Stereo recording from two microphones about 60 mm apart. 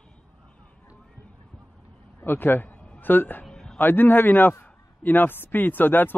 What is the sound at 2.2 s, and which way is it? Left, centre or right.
A man's voice, left.